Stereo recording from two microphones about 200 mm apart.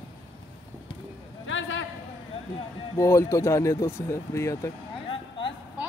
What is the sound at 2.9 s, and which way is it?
Speech, 15° left (ahead or behind).